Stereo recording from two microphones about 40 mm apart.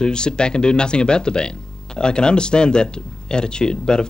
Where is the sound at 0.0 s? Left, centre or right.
Left.